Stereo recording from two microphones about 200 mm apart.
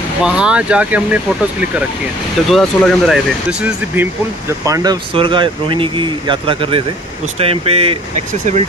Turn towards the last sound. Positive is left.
turn(degrees=-30)  # may be behind; listen again after turning